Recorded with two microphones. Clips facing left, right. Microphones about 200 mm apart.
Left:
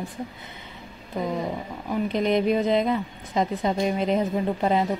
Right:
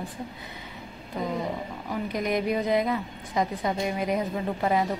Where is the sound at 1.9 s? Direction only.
25° left (ahead or behind).